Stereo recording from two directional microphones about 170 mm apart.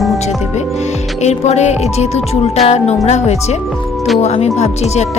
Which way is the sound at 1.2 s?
40° left (ahead or behind).